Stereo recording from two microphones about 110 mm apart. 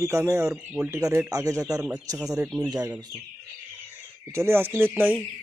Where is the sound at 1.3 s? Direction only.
30° right (ahead or behind).